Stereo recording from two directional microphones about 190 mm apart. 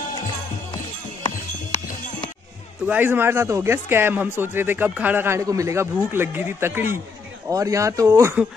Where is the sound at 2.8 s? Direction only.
10° right (ahead or behind).